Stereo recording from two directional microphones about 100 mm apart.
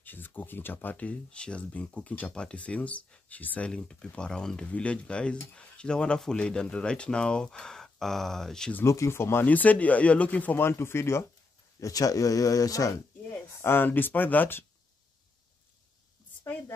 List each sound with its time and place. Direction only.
0.0 s speech: 20° left (ahead or behind)
8.8 s speech: 30° left (ahead or behind)
11.8 s speech: 35° left (ahead or behind)
13.5 s speech: 25° left (ahead or behind)